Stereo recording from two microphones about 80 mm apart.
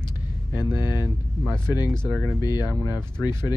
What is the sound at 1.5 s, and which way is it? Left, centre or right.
Speech, right.